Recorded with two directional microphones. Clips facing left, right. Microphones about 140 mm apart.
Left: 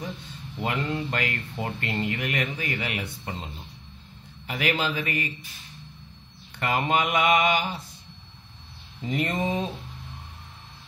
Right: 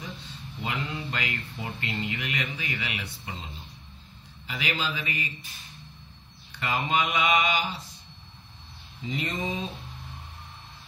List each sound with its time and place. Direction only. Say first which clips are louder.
0.2 s speech: left 5 dB; 50° left (ahead or behind)
4.5 s speech: left 5 dB; 55° left (ahead or behind)
6.5 s speech: left 3 dB; 50° left (ahead or behind)
9.0 s speech: left 5 dB; 55° left (ahead or behind)